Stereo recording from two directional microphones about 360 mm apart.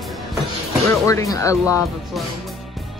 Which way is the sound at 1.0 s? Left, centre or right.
Centre.